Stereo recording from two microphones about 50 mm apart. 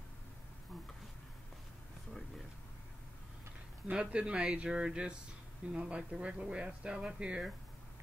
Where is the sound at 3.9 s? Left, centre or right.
Right.